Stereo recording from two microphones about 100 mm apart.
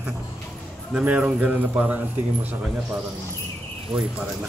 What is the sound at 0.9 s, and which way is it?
Speech, 10° right (ahead or behind).